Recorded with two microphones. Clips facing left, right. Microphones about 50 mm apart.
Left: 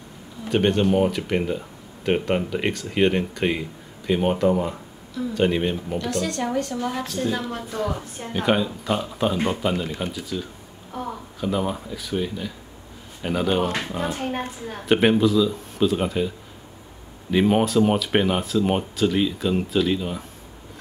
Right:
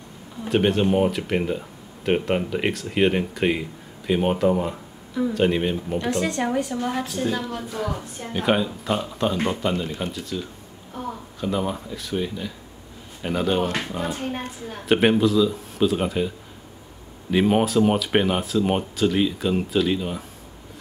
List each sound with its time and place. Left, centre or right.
0.5 s speech: centre
5.9 s a woman's voice: right; by 14.1 s centre
14.3 s a woman's voice: left
14.9 s speech: centre